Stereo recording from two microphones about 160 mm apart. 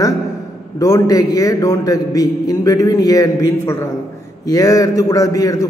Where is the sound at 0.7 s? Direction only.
20° left (ahead or behind).